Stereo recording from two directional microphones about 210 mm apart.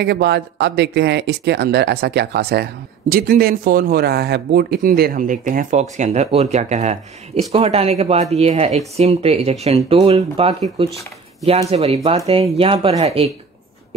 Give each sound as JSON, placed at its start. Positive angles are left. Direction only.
{"t": 0.0, "sound": "speech", "side_deg": -55}